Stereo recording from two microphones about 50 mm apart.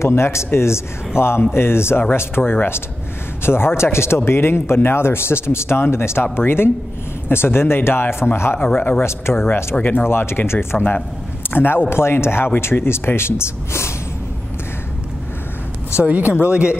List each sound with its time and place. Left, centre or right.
0.0 s speech: left
8.5 s speech: left
9.0 s speech: left
9.8 s speech: left
10.0 s speech: left
11.4 s a man's voice: left
11.9 s speech: left
16.0 s speech: right